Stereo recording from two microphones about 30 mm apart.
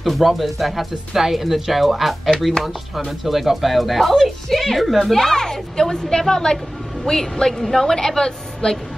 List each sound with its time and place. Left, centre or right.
0.2 s a woman's voice: centre; by 8.8 s left